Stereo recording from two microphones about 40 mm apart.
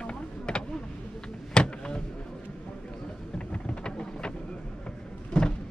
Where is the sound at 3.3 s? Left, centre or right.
Left.